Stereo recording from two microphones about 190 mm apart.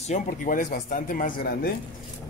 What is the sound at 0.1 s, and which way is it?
Speech, 45° left (ahead or behind).